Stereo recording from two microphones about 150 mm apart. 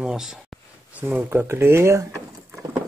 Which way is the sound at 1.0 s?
10° right (ahead or behind).